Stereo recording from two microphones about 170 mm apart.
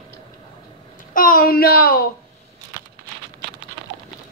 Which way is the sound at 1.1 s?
55° left (ahead or behind).